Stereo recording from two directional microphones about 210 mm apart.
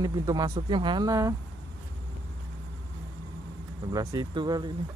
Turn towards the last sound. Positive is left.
turn(degrees=-20)  # may be behind; listen again after turning